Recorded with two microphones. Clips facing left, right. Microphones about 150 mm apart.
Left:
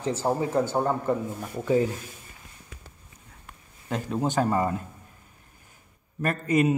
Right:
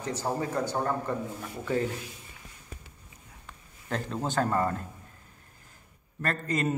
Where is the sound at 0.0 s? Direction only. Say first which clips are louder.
Left 5 dB; 30° left (ahead or behind).